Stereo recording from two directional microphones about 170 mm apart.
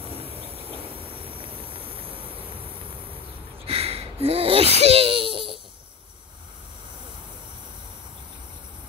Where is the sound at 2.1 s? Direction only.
10° right (ahead or behind).